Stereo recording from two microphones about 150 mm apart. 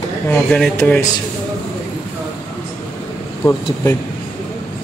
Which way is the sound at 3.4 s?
15° left (ahead or behind).